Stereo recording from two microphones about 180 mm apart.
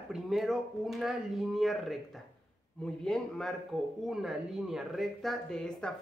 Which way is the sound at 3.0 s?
5° left (ahead or behind).